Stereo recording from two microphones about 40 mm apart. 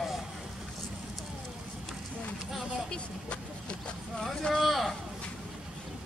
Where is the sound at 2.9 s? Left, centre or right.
Left.